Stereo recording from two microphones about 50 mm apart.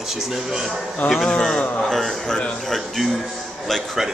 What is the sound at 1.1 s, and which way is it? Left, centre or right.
A man's voice, centre.